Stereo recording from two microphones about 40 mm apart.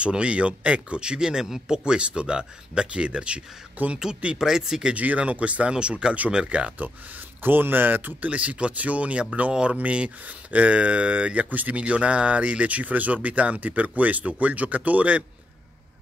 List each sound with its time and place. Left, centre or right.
0.1 s speech: right; by 1.8 s centre
1.9 s speech: right
3.8 s speech: right
4.4 s speech: centre
4.9 s speech: right
6.8 s speech: right
8.3 s speech: right